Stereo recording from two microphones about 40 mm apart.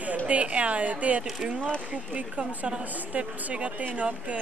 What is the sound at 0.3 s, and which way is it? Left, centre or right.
Speech, right.